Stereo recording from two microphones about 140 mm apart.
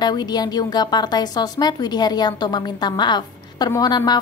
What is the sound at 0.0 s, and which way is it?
A woman's voice, 30° left (ahead or behind).